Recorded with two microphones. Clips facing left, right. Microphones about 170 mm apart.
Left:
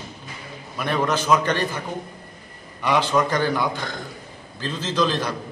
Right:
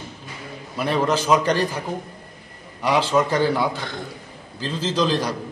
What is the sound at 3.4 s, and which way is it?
A man's voice, 30° right (ahead or behind).